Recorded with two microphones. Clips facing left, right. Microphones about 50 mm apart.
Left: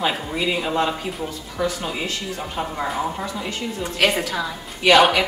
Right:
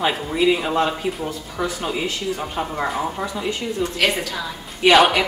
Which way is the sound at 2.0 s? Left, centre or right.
Centre.